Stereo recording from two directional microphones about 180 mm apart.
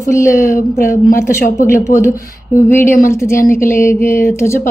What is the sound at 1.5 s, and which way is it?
A woman's voice, 15° left (ahead or behind).